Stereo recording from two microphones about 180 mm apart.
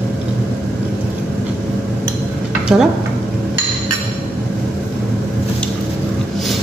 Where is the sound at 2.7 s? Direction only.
5° right (ahead or behind).